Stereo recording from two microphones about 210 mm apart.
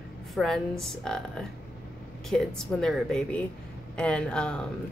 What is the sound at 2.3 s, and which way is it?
Speech, centre (ahead or behind).